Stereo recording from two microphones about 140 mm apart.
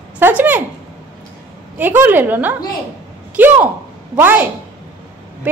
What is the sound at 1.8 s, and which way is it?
Speech, 15° right (ahead or behind).